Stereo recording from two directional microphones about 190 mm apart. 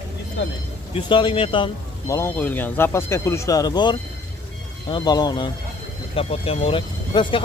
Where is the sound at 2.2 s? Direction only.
10° left (ahead or behind).